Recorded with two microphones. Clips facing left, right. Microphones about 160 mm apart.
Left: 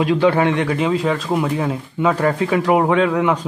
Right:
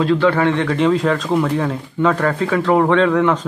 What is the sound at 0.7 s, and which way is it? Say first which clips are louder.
Speech: right 3 dB; 5° left (ahead or behind).